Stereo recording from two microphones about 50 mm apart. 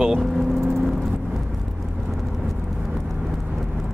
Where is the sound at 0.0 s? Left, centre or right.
Centre.